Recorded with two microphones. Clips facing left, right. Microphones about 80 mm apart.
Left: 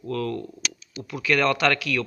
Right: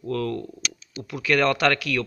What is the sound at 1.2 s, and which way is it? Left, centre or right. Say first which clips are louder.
Speech: right 1 dB; right.